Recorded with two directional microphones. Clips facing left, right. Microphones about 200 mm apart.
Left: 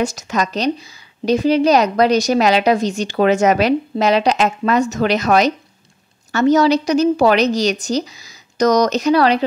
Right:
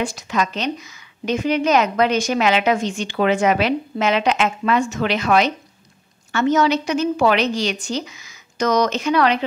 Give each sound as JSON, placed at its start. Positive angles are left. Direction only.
{"t": 0.0, "sound": "a woman's voice", "side_deg": 45}